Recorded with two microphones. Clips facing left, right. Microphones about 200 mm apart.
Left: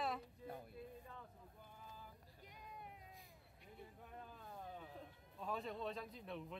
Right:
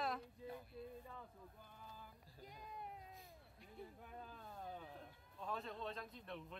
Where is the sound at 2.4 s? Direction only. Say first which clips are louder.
Right 5 dB; 35° right (ahead or behind).